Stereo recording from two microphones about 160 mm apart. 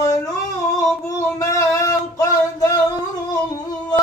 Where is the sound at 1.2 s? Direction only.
20° left (ahead or behind).